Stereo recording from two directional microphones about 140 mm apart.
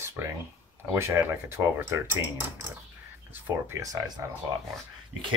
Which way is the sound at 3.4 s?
20° right (ahead or behind).